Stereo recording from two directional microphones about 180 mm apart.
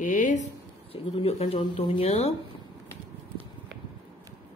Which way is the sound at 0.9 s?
30° left (ahead or behind).